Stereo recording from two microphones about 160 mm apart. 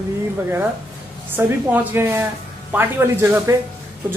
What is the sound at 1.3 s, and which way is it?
Speech, 15° right (ahead or behind).